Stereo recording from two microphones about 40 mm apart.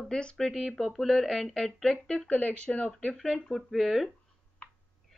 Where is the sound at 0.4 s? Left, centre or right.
Centre.